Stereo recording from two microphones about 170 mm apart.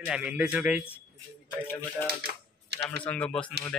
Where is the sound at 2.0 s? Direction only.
75° right (ahead or behind).